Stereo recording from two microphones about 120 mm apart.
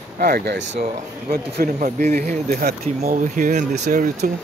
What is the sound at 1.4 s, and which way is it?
Speech, 85° right.